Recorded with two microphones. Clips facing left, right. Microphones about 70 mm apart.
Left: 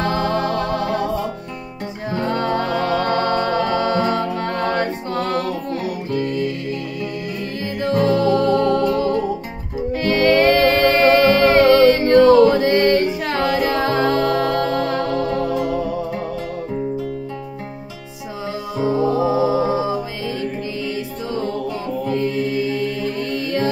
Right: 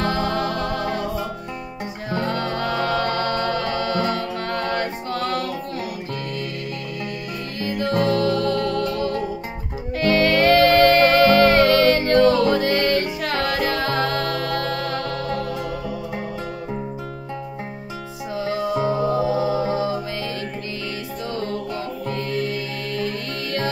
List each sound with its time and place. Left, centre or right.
0.1 s music: left
2.0 s music: left
7.8 s music: left
19.1 s music: left
22.1 s music: centre